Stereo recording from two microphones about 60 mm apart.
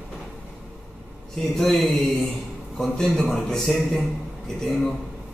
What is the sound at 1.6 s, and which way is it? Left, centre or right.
A man's voice, centre.